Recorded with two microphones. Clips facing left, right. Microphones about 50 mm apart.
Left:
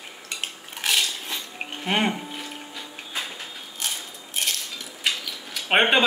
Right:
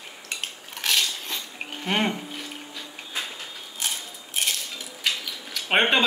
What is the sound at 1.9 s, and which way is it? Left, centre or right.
Speech, centre.